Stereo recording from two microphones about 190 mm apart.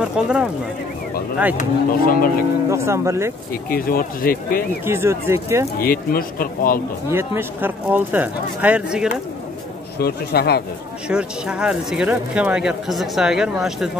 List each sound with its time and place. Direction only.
0.0 s speech: 5° right (ahead or behind)
1.6 s speech: 50° left (ahead or behind)
2.7 s speech: 15° right (ahead or behind)
3.7 s speech: 50° left (ahead or behind)
4.8 s speech: 15° right (ahead or behind)
5.8 s speech: 50° left (ahead or behind)
7.1 s speech: 10° right (ahead or behind)
9.9 s speech: 55° left (ahead or behind)
11.1 s speech: 5° right (ahead or behind)